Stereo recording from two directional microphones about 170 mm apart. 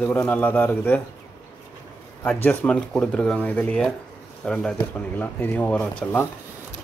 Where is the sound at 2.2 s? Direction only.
10° left (ahead or behind).